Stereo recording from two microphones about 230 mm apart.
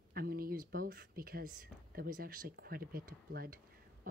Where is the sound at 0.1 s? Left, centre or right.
Right.